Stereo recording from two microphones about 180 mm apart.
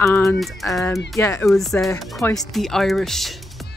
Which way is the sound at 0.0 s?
15° left (ahead or behind).